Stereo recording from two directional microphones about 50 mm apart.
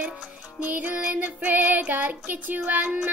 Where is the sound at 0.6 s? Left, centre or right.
Right.